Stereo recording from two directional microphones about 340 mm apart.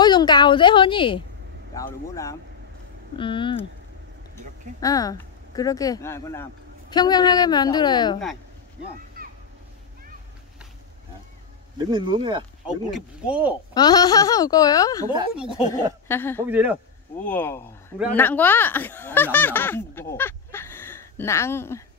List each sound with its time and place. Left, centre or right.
0.0 s speech: centre
4.7 s speech: centre
9.2 s a sound: right
11.9 s speech: centre
12.9 s speech: centre
13.7 s speech: centre
15.0 s speech: centre
15.7 s speech: centre
16.4 s speech: centre
17.2 s speech: centre